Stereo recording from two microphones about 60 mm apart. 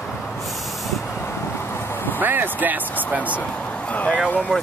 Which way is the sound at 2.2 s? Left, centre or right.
Right.